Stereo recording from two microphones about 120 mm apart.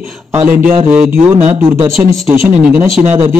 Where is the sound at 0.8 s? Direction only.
15° right (ahead or behind).